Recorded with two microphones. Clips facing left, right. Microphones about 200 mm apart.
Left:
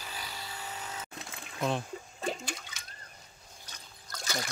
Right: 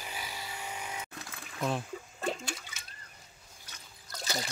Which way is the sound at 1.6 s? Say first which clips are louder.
Left 1 dB; centre (ahead or behind).